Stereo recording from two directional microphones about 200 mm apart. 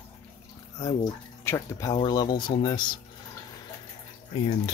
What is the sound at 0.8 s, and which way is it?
Speech, 15° left (ahead or behind).